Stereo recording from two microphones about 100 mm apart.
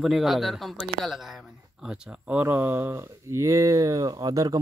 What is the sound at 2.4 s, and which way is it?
Speech, 25° right (ahead or behind).